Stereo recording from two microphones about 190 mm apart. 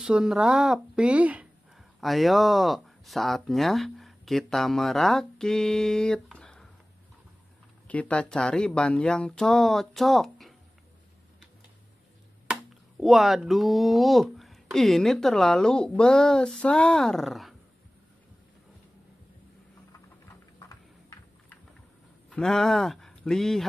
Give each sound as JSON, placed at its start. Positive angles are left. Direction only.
{"t": 0.0, "sound": "speech", "side_deg": -5}
{"t": 7.9, "sound": "speech", "side_deg": 5}
{"t": 13.0, "sound": "speech", "side_deg": 0}
{"t": 20.5, "sound": "a sound", "side_deg": 15}
{"t": 22.3, "sound": "speech", "side_deg": 5}